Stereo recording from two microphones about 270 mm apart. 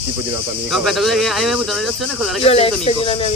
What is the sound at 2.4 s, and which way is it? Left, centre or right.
Speech, left.